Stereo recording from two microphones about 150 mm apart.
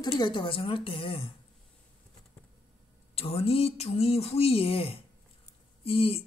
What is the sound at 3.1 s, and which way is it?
A woman's voice, 40° left (ahead or behind).